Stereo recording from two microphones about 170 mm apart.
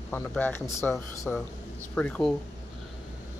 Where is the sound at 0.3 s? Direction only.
10° left (ahead or behind).